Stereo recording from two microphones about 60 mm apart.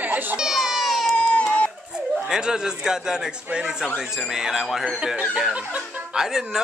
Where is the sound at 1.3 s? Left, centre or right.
Left.